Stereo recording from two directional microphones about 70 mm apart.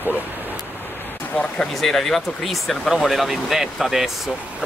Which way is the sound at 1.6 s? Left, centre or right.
Centre.